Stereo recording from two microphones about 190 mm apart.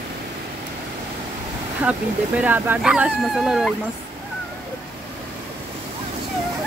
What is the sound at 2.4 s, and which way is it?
Speech, 10° right (ahead or behind).